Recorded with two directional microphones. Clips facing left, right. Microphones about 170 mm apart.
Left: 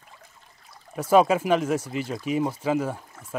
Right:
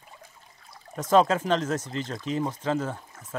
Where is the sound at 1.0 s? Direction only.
10° left (ahead or behind).